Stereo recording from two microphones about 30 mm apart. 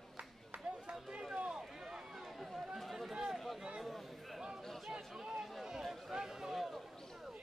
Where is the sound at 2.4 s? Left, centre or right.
Centre.